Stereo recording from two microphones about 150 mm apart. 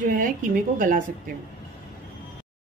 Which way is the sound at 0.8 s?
65° right (ahead or behind).